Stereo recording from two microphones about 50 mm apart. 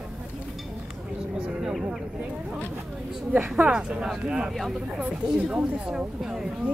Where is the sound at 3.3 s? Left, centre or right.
Centre.